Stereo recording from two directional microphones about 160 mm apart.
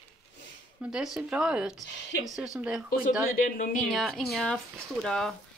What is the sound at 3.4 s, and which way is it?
Speech, 60° left (ahead or behind).